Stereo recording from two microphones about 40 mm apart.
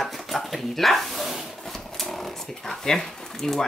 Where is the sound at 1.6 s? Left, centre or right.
Centre.